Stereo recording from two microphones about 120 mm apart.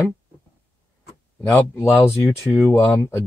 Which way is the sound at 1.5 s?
15° left (ahead or behind).